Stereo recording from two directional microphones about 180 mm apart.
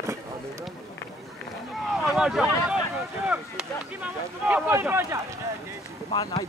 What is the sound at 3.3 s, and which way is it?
Speech, 10° right (ahead or behind).